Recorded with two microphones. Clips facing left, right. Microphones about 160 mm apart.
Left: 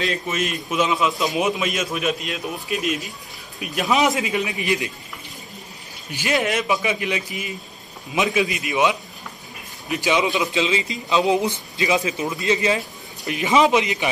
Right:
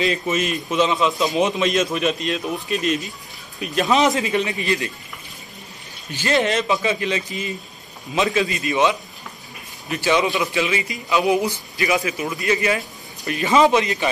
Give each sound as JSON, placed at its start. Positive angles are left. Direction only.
{"t": 0.0, "sound": "a man's voice", "side_deg": 0}
{"t": 6.1, "sound": "a man's voice", "side_deg": 10}